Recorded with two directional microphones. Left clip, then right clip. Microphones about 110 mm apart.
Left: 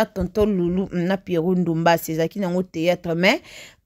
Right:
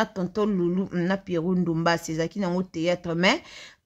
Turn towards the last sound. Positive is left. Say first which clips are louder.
# left 4 dB
turn(degrees=40)  # may be behind; listen again after turning